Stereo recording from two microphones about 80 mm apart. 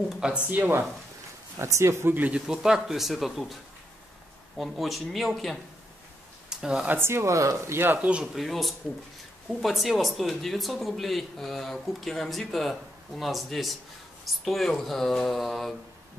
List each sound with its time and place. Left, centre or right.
0.5 s speech: right
1.6 s speech: right; by 3.5 s centre
4.6 s speech: centre
6.9 s speech: right
8.4 s speech: centre